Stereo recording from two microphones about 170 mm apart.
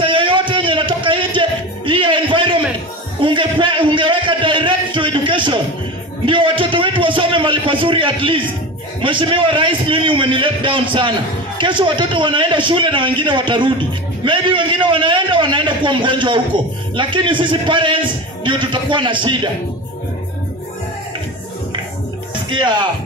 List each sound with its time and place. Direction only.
0.0 s music: 30° right (ahead or behind)
3.2 s a sound: 30° right (ahead or behind)
6.2 s a man's voice: 30° right (ahead or behind)
22.5 s a man's voice: 25° right (ahead or behind)